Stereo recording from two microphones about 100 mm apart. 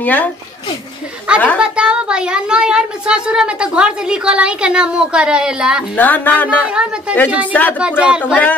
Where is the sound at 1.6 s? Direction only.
10° right (ahead or behind).